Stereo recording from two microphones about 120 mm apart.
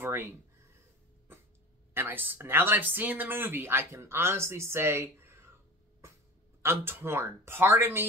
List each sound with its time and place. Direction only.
0.0 s a sound: 20° right (ahead or behind)
2.0 s speech: 15° right (ahead or behind)
6.6 s speech: 20° right (ahead or behind)